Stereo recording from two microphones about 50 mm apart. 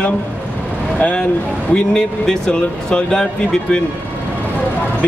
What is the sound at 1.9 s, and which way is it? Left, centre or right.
Speech, centre.